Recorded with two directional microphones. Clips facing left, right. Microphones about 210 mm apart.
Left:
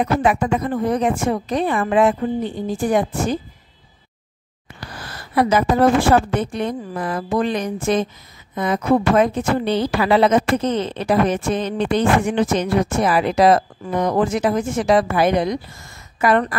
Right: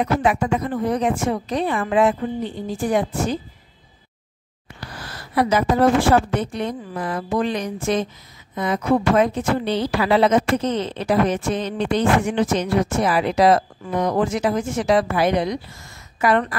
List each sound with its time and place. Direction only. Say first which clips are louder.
0.0 s a woman's voice: left 2 dB; 50° left (ahead or behind)
5.3 s a woman's voice: left 2 dB; 50° left (ahead or behind)